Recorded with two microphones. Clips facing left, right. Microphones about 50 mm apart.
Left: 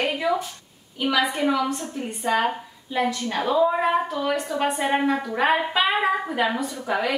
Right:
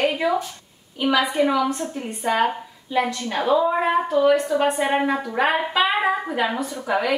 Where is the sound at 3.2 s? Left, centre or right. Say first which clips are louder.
Even; centre.